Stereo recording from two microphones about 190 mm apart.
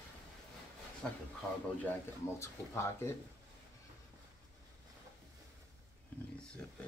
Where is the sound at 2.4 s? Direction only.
15° left (ahead or behind).